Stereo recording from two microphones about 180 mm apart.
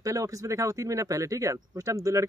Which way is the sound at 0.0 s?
20° right (ahead or behind).